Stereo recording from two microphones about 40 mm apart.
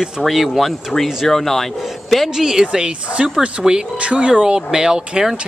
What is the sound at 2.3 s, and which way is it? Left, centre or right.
Speech, centre.